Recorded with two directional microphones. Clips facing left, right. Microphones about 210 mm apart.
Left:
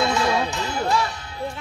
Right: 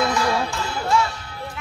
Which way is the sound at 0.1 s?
25° left (ahead or behind).